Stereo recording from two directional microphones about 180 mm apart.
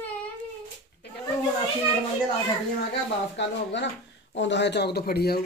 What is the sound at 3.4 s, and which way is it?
Speech, 75° left (ahead or behind).